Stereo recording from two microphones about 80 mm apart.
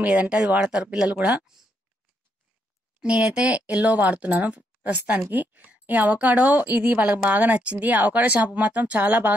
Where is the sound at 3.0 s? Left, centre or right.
Centre.